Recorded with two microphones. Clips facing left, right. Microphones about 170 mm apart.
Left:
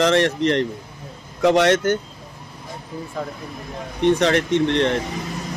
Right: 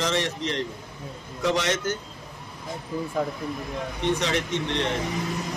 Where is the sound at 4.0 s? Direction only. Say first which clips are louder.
Left 9 dB; 60° left (ahead or behind).